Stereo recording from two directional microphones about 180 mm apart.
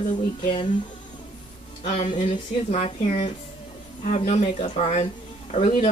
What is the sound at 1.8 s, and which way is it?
Speech, 40° left (ahead or behind).